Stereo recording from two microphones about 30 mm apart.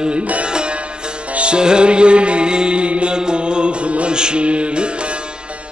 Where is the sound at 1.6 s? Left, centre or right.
Right.